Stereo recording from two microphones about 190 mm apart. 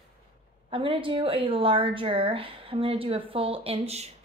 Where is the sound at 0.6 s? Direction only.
30° right (ahead or behind).